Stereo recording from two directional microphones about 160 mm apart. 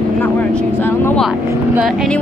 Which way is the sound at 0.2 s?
5° left (ahead or behind).